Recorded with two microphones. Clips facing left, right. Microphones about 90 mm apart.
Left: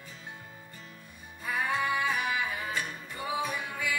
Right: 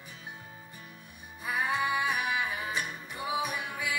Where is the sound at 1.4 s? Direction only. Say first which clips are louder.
Even; 15° right (ahead or behind).